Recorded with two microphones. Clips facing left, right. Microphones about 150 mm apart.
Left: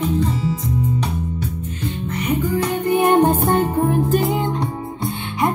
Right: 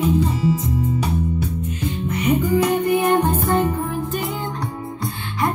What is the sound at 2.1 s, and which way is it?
Music, 15° right (ahead or behind).